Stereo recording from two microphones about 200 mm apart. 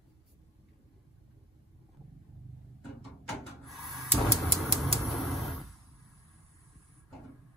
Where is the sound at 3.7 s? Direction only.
Centre (ahead or behind).